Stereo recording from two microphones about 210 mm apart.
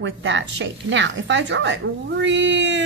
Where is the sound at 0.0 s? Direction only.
60° right (ahead or behind).